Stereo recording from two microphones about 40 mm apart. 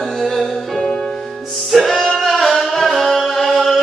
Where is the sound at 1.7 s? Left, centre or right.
Centre.